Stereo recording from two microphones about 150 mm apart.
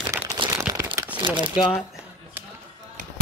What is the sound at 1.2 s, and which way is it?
Speech, 30° right (ahead or behind).